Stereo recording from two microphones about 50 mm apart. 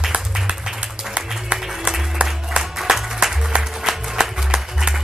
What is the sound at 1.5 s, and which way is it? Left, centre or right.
Music, centre.